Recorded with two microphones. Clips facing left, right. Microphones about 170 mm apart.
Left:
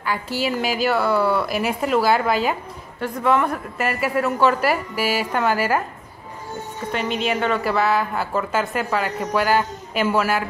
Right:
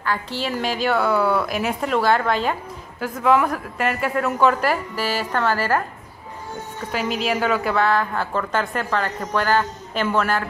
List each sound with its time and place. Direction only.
0.0 s a woman's voice: 10° left (ahead or behind)
6.9 s a woman's voice: centre (ahead or behind)